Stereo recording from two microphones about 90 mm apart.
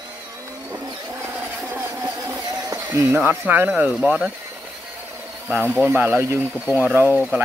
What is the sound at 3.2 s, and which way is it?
Speech, 10° right (ahead or behind).